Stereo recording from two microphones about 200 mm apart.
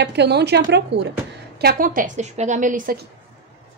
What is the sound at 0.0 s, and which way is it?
A woman's voice, 60° right (ahead or behind).